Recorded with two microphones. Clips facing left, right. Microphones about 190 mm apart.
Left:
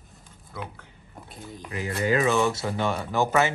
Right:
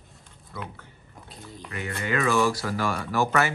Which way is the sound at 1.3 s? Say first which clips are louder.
Left 2 dB; centre (ahead or behind).